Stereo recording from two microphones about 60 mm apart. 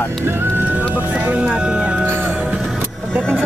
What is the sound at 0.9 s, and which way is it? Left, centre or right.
Speech, right.